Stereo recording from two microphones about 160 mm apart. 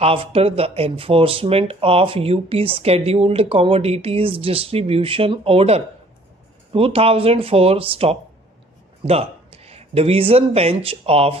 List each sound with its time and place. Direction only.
0.0 s speech: 35° right (ahead or behind)